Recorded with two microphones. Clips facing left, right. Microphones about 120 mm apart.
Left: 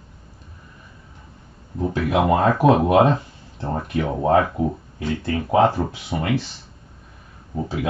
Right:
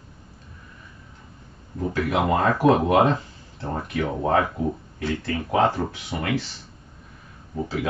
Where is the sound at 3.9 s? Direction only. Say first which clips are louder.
Left 4 dB; 20° left (ahead or behind).